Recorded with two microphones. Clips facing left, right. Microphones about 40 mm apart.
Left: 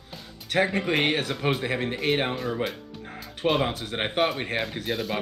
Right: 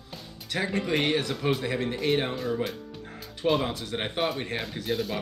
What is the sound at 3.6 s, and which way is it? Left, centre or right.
Speech, left.